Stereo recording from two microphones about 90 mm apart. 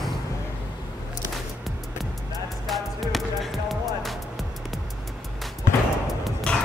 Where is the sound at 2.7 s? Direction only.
Centre (ahead or behind).